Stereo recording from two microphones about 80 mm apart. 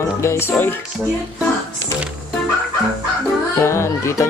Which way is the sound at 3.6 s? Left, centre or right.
Left.